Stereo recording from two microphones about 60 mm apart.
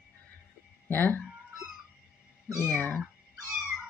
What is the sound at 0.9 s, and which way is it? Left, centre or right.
Speech, left.